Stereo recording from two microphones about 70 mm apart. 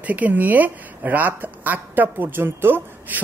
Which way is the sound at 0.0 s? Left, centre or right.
Right.